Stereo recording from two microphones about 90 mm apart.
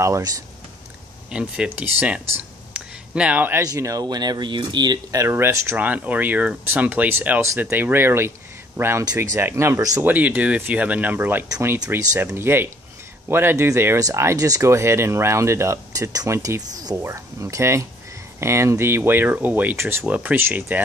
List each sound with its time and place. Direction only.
0.0 s speech: 35° right (ahead or behind)
1.3 s speech: 10° right (ahead or behind)
3.6 s speech: 40° right (ahead or behind); by 4.9 s 60° right (ahead or behind)
5.1 s speech: 30° right (ahead or behind)
5.8 s speech: 20° right (ahead or behind)
9.2 s speech: 35° right (ahead or behind); by 20.8 s 20° right (ahead or behind)